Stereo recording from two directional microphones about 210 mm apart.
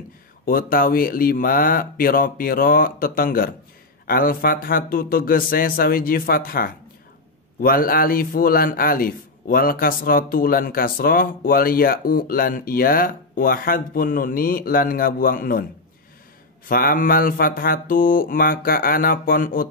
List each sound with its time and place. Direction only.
0.5 s a man's voice: 40° left (ahead or behind)
16.6 s a man's voice: 40° left (ahead or behind)